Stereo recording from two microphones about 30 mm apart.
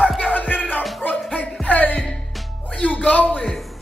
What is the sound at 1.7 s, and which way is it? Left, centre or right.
Music, left.